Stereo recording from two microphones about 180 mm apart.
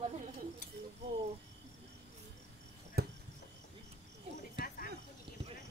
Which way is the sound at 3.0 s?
60° right (ahead or behind).